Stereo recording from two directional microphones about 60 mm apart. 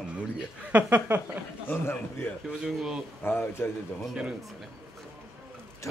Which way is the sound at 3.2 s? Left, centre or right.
Left.